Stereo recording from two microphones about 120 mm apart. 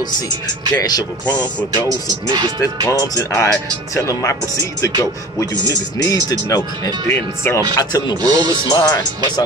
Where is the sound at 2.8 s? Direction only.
25° left (ahead or behind).